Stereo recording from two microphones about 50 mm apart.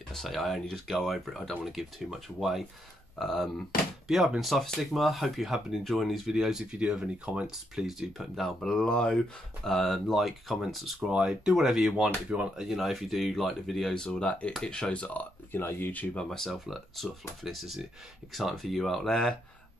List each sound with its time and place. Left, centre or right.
0.1 s speech: centre
8.4 s speech: centre
11.1 s speech: centre
11.5 s speech: centre
12.3 s speech: centre
12.6 s speech: centre; by 15.2 s left
15.5 s speech: left
16.1 s speech: centre
16.4 s speech: centre